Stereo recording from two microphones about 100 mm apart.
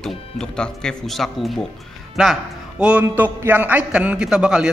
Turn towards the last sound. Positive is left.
turn(degrees=-10)  # may be behind; listen again after turning